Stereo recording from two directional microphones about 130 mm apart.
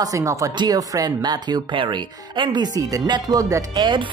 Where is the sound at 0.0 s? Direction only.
25° right (ahead or behind).